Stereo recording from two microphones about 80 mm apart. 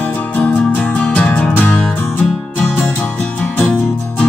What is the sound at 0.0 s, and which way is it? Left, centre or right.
Music, left.